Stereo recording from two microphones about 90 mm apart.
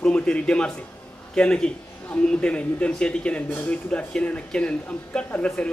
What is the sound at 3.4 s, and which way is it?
Speech, 25° left (ahead or behind).